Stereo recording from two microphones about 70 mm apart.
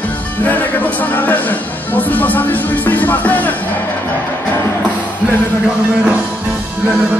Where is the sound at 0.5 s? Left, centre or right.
Left.